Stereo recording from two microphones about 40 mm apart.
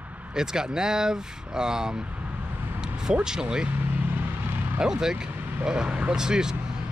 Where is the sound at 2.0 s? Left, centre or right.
Right.